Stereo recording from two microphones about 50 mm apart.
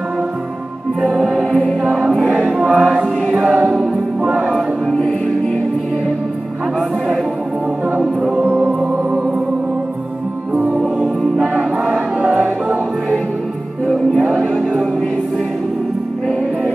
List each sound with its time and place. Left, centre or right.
1.1 s music: centre
1.5 s choir: centre
1.9 s music: centre
2.3 s music: centre
3.3 s choir: centre
3.9 s music: centre
4.9 s music: centre
8.0 s music: centre
10.5 s music: right
10.8 s music: centre
13.8 s music: centre